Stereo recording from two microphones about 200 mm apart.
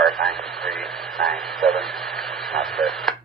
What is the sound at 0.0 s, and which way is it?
Radio, centre (ahead or behind).